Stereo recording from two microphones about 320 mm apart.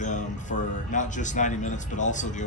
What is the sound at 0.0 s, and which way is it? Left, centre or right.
A man's voice, left.